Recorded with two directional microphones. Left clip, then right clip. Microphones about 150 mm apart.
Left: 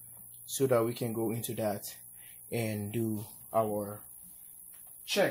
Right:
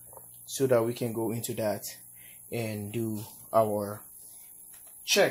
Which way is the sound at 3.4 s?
45° right (ahead or behind).